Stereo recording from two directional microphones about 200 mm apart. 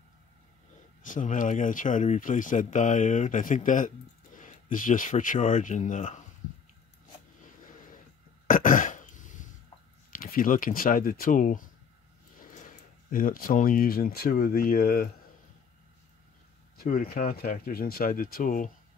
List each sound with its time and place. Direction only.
1.0 s speech: 40° left (ahead or behind)
8.5 s throat clearing: 40° left (ahead or behind)
10.1 s speech: 45° left (ahead or behind)
16.7 s speech: 45° left (ahead or behind)